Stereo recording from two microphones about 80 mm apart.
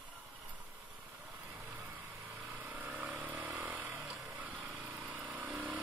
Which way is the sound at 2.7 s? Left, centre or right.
Centre.